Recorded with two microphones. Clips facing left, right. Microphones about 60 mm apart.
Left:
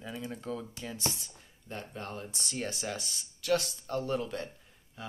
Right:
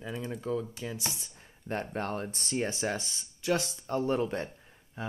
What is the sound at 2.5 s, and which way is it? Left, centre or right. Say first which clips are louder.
Speech: right 5 dB; right.